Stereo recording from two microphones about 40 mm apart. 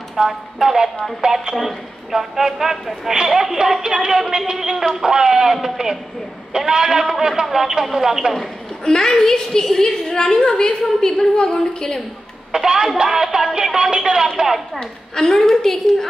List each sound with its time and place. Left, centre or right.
0.1 s speech: centre
1.4 s a man's voice: centre
2.1 s speech: centre
8.8 s a woman's voice: centre
12.5 s speech: centre
14.8 s a woman's voice: centre